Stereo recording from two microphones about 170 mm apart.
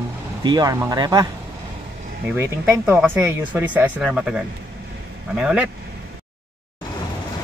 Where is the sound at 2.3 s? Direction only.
15° right (ahead or behind).